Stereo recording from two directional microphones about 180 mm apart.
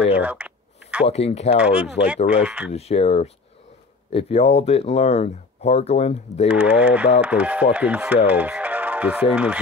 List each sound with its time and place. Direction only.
0.0 s speech: 10° right (ahead or behind)
1.0 s speech: 35° left (ahead or behind)
1.6 s speech: 5° right (ahead or behind)
2.7 s speech: 35° left (ahead or behind)
6.5 s speech: 5° right (ahead or behind)
8.3 s music: 10° right (ahead or behind)
9.3 s speech: 5° right (ahead or behind)